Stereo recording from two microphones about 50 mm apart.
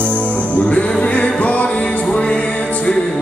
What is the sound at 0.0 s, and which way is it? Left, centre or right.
Music, left.